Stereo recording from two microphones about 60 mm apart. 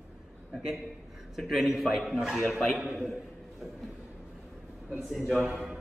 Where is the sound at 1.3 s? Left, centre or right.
Centre.